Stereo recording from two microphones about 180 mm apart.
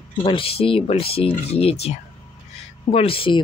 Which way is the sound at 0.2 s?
30° left (ahead or behind).